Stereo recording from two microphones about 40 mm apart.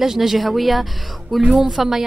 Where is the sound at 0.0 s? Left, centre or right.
Centre.